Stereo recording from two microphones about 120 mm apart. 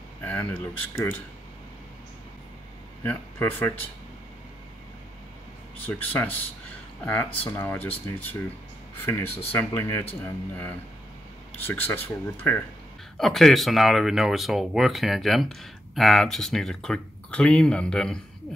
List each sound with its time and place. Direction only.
0.2 s speech: 15° left (ahead or behind)
3.0 s speech: 15° left (ahead or behind)
5.9 s speech: 15° left (ahead or behind)
9.8 s speech: 15° left (ahead or behind)
13.2 s speech: centre (ahead or behind)